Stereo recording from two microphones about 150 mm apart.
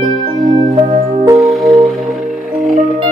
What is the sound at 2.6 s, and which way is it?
Music, 60° right (ahead or behind).